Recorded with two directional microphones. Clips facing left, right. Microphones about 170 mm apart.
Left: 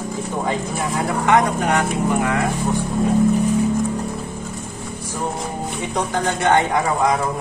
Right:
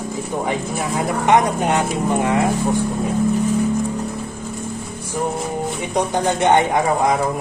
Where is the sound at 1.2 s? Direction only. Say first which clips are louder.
Right 1 dB; 20° right (ahead or behind).